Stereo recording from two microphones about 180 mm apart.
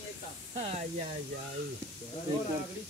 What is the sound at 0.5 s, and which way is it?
Spray, 35° right (ahead or behind).